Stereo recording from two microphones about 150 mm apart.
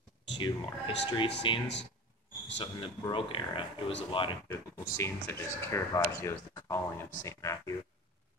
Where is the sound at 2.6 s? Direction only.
30° left (ahead or behind).